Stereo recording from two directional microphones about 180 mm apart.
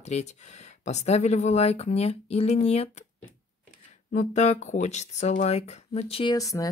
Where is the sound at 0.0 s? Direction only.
40° left (ahead or behind).